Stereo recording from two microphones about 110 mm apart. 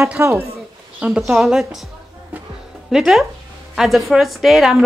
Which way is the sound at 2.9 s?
5° right (ahead or behind).